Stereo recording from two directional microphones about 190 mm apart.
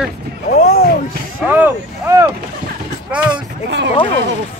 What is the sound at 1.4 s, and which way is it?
Speech, 10° right (ahead or behind).